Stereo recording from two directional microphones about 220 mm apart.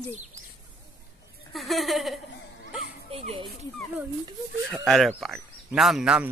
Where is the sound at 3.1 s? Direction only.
25° right (ahead or behind).